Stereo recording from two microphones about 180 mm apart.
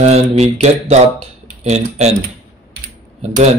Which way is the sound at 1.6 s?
40° right (ahead or behind).